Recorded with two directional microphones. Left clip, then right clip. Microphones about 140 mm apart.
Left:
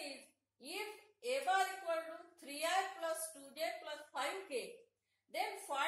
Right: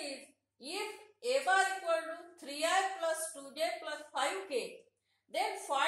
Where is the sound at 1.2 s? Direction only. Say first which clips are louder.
Right 6 dB; 10° right (ahead or behind).